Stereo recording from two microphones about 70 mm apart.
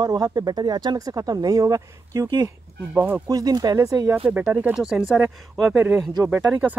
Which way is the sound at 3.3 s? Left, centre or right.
Right.